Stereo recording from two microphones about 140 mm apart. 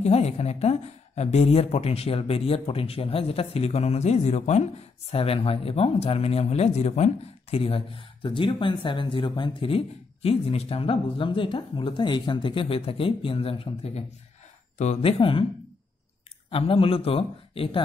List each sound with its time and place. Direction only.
0.0 s a woman's voice: 50° left (ahead or behind)
16.4 s a woman's voice: 40° left (ahead or behind)